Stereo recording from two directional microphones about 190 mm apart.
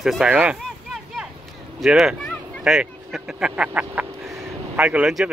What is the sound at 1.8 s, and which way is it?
Speech, centre (ahead or behind).